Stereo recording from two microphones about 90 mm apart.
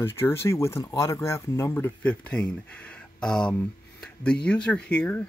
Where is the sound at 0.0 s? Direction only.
30° left (ahead or behind).